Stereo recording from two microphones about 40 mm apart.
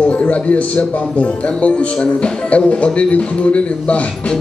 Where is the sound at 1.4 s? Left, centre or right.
Left.